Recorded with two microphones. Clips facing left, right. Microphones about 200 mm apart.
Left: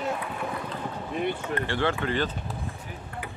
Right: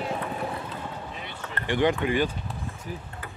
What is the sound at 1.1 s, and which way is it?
Speech, 55° left (ahead or behind).